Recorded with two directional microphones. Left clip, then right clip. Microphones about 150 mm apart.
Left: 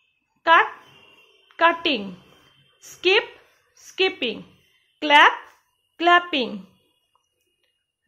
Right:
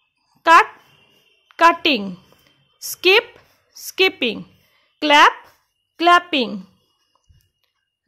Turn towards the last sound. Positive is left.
turn(degrees=-40)  # may be behind; listen again after turning